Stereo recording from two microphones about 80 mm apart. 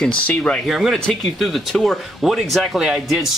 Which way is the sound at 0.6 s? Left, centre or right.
Centre.